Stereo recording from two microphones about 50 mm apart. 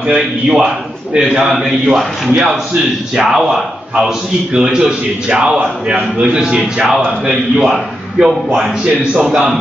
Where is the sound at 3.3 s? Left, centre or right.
Centre.